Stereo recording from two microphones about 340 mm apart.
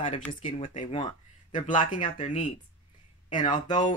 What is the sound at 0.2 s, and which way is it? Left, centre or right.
Speech, centre.